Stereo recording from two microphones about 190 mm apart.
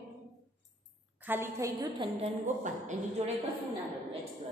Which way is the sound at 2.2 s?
40° right (ahead or behind).